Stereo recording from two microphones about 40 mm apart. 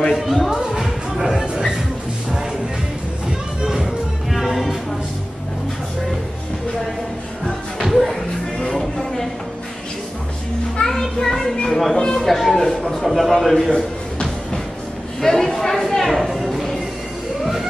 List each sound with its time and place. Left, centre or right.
0.1 s speech: centre
0.5 s music: centre
3.3 s music: centre
7.8 s music: centre
10.8 s a sound: centre
11.9 s a man's voice: centre
13.7 s a sound: centre